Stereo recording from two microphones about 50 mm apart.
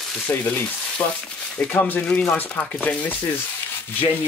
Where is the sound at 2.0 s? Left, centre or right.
Left.